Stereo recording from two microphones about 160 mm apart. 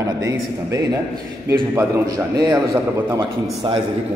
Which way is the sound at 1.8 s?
20° right (ahead or behind).